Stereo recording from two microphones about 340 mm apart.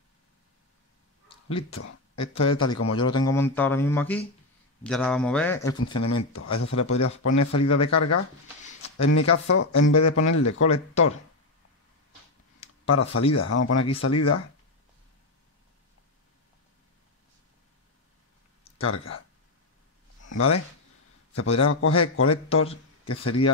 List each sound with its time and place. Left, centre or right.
1.3 s a sound: centre
1.7 s speech: left
3.0 s speech: centre
5.9 s speech: left
12.9 s speech: left
18.8 s speech: left
20.2 s a sound: left
21.4 s speech: left